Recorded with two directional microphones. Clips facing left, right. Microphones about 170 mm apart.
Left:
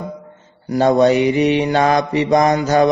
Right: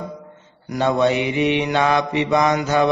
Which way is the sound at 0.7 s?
40° left (ahead or behind).